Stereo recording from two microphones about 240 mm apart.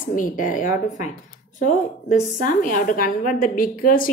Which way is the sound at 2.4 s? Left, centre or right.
Left.